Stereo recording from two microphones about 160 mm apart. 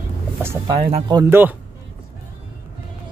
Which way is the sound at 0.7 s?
35° right (ahead or behind).